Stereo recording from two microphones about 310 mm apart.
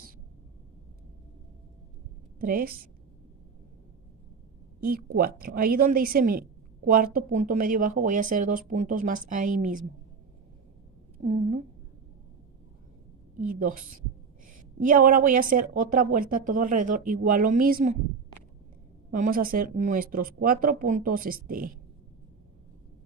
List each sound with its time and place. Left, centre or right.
2.4 s a woman's voice: right
4.7 s a woman's voice: right
11.2 s a woman's voice: centre
13.4 s a woman's voice: right
13.7 s a woman's voice: right
14.8 s a woman's voice: right
19.0 s a woman's voice: right